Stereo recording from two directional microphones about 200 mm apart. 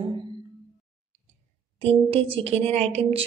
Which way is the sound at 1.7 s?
30° right (ahead or behind).